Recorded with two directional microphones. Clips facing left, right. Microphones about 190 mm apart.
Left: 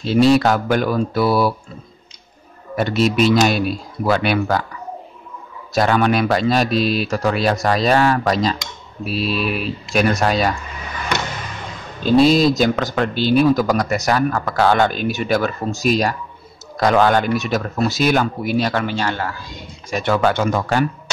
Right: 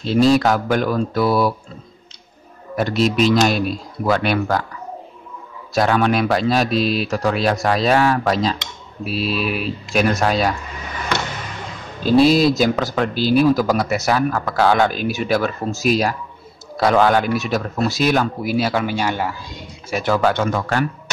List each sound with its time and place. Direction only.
0.0 s speech: centre (ahead or behind)
2.7 s speech: centre (ahead or behind)
5.7 s speech: centre (ahead or behind)
12.0 s speech: 5° right (ahead or behind)
19.9 s speech: centre (ahead or behind)
20.4 s speech: 15° left (ahead or behind)